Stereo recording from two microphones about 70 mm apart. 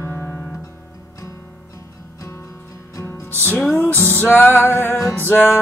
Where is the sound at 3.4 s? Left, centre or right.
Left.